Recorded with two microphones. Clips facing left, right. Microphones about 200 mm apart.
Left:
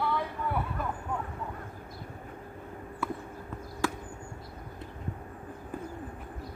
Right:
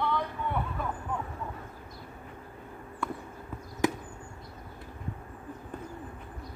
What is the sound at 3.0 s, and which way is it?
Horse, 5° left (ahead or behind).